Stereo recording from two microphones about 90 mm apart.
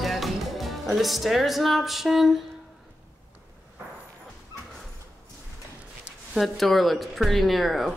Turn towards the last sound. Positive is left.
turn(degrees=0)  # may be behind; listen again after turning